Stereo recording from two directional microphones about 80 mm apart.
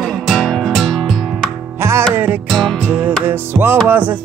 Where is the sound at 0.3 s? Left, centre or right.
Centre.